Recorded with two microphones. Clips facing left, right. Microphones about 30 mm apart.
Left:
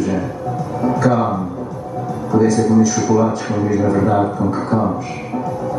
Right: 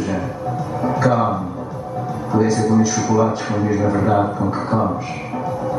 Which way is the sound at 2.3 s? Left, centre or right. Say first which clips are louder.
Left 3 dB; centre.